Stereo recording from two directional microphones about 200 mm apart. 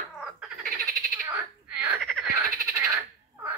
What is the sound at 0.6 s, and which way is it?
Frog, 45° right (ahead or behind).